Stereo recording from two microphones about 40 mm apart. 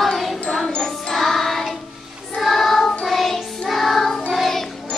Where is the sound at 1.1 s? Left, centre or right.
Centre.